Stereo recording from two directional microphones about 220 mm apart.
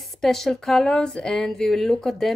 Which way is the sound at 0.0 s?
Centre (ahead or behind).